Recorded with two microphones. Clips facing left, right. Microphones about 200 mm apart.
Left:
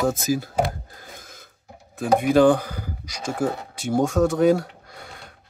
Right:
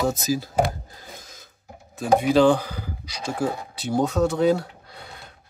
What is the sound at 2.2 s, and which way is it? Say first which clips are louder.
Speech: left 2 dB; 50° left (ahead or behind).